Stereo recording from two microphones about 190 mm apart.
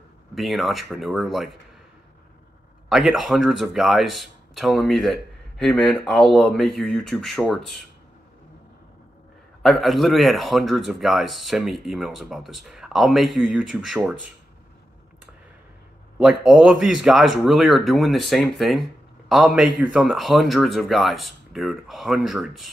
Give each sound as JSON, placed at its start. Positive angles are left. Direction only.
{"t": 0.3, "sound": "a man's voice", "side_deg": 0}
{"t": 2.9, "sound": "a man's voice", "side_deg": 0}
{"t": 9.6, "sound": "a man's voice", "side_deg": 0}
{"t": 16.2, "sound": "a man's voice", "side_deg": -5}